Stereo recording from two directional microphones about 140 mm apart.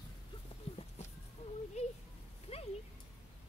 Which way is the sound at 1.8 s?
50° left (ahead or behind).